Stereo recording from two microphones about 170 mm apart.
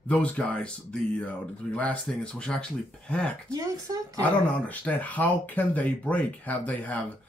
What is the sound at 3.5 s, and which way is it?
Speech, 20° right (ahead or behind).